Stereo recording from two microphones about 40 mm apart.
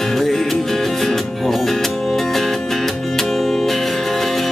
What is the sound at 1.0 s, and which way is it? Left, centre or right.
Music, centre.